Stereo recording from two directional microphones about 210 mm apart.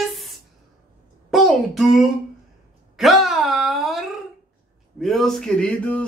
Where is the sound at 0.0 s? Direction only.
Centre (ahead or behind).